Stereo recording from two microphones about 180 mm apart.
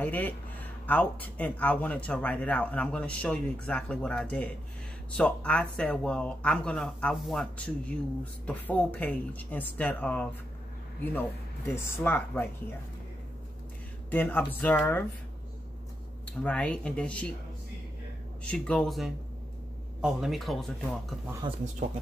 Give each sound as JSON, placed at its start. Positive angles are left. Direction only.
{"t": 0.0, "sound": "speech", "side_deg": 10}
{"t": 14.1, "sound": "speech", "side_deg": 10}
{"t": 16.4, "sound": "speech", "side_deg": 5}
{"t": 18.4, "sound": "speech", "side_deg": 5}
{"t": 21.4, "sound": "speech", "side_deg": -25}